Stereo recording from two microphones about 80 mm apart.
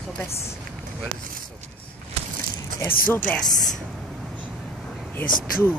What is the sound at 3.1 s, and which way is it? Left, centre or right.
Speech, left.